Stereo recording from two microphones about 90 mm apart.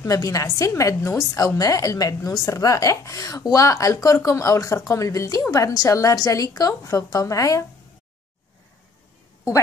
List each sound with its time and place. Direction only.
0.0 s a woman's voice: 40° left (ahead or behind)